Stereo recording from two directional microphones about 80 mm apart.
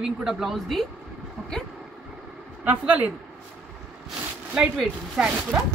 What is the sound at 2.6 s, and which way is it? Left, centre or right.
Speech, centre.